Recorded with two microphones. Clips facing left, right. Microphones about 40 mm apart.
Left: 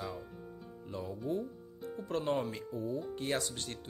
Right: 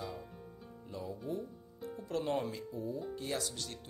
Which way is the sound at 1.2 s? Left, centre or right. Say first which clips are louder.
Left 4 dB; centre.